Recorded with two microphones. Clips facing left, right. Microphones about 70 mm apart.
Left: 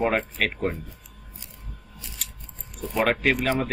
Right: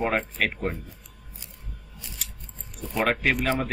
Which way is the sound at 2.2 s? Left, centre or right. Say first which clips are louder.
Even; centre.